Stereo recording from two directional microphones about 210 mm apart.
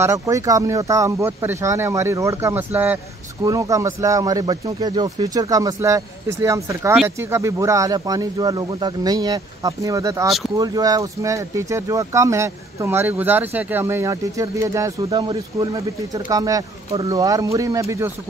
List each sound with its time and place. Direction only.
0.0 s speech: 15° right (ahead or behind)
16.9 s speech: 25° right (ahead or behind)